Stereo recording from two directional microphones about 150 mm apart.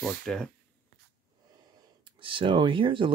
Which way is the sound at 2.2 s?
35° right (ahead or behind).